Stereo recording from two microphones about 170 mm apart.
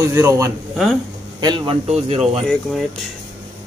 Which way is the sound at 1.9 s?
35° right (ahead or behind).